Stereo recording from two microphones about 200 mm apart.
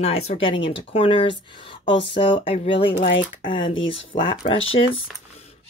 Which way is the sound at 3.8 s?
25° left (ahead or behind).